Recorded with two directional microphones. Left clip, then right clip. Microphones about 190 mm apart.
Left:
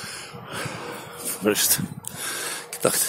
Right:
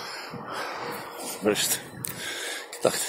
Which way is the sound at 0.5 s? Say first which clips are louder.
Left 1 dB; 40° left (ahead or behind).